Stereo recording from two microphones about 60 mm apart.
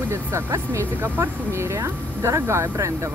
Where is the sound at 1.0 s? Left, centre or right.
Right.